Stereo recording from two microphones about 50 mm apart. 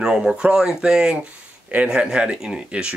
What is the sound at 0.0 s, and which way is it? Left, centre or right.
Speech, centre.